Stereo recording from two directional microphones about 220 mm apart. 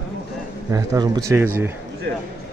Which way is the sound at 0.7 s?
15° right (ahead or behind).